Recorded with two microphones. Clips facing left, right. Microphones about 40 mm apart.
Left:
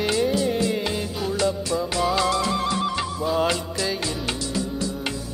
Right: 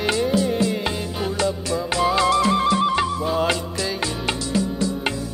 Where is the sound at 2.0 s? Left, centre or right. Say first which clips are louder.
Right 5 dB; centre.